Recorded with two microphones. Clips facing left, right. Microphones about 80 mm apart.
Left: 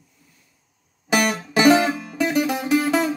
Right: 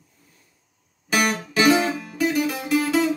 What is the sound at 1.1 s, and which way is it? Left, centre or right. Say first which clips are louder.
Music: left 2 dB; left.